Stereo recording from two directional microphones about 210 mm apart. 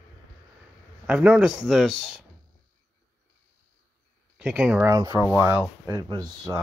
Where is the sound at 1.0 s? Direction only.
5° right (ahead or behind).